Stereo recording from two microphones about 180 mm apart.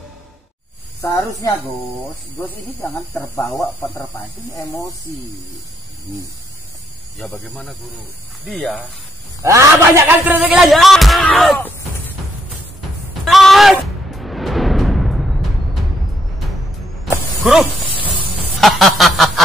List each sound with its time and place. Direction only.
1.1 s speech: 20° left (ahead or behind)
3.9 s speech: 20° left (ahead or behind)
7.4 s a man's voice: centre (ahead or behind)
9.4 s a man's voice: 15° right (ahead or behind); by 11.7 s 5° left (ahead or behind)
13.2 s music: centre (ahead or behind)
17.0 s mechanisms: centre (ahead or behind)
18.6 s a man's voice: centre (ahead or behind)